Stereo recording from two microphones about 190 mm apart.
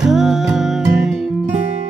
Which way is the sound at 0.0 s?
Centre (ahead or behind).